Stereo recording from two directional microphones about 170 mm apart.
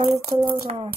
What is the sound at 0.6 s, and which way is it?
Speech, 35° right (ahead or behind).